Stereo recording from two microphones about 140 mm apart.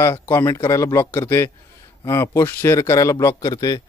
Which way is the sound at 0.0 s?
20° left (ahead or behind).